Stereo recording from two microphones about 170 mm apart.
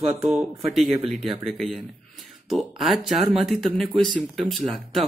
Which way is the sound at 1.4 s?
Centre (ahead or behind).